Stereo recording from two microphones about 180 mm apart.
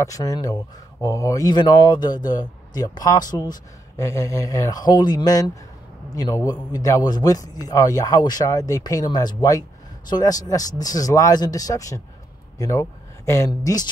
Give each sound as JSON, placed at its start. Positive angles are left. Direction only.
{"t": 0.0, "sound": "a man's voice", "side_deg": 20}